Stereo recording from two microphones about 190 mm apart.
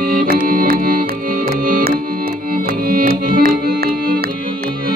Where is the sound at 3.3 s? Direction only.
50° right (ahead or behind).